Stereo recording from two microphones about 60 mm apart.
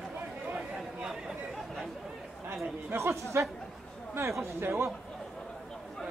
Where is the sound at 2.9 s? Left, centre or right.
Right.